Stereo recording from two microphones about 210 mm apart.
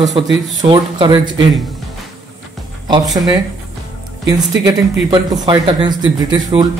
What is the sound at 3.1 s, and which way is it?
Speech, 20° right (ahead or behind).